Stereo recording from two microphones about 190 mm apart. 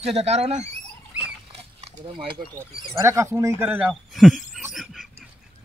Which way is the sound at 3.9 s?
Centre (ahead or behind).